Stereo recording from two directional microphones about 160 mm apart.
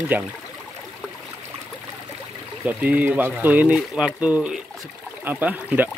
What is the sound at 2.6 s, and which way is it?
Speech, 10° right (ahead or behind).